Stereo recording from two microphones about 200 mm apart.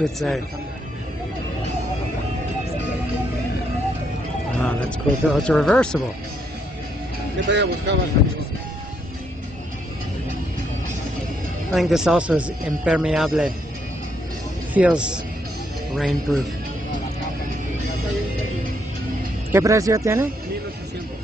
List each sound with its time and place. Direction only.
0.0 s speech: centre (ahead or behind)
4.6 s speech: 5° left (ahead or behind)
7.4 s speech: 60° right (ahead or behind)
11.7 s speech: centre (ahead or behind)
14.7 s speech: 5° right (ahead or behind)
19.5 s speech: 15° right (ahead or behind)